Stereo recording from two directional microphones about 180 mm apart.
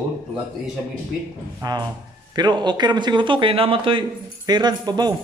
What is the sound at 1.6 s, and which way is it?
A man's voice, 20° right (ahead or behind).